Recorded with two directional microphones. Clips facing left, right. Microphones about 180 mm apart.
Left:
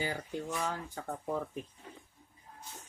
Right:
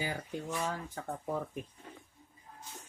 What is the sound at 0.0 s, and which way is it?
Speech, centre (ahead or behind).